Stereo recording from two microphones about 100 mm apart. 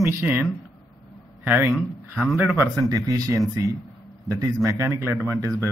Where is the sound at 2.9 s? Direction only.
35° right (ahead or behind).